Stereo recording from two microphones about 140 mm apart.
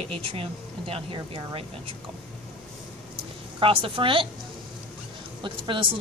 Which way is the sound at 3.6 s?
40° right (ahead or behind).